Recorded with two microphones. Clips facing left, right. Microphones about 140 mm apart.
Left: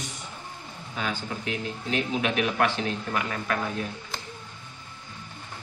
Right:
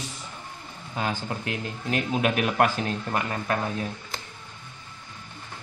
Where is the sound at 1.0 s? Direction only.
30° right (ahead or behind).